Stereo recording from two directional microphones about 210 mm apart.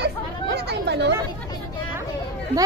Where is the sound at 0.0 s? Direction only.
50° right (ahead or behind).